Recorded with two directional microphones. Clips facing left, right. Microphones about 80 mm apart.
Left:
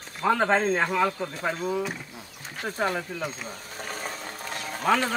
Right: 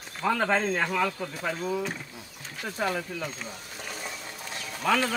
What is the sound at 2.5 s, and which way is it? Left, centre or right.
Speech, left.